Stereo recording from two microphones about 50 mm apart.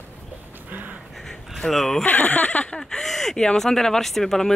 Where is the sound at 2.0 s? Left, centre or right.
Left.